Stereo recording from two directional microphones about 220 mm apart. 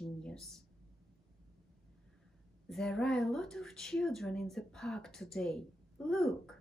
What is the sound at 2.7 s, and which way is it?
Speech, centre (ahead or behind).